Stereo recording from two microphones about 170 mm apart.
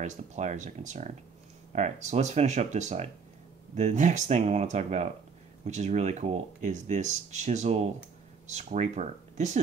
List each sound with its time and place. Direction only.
0.0 s speech: 45° right (ahead or behind)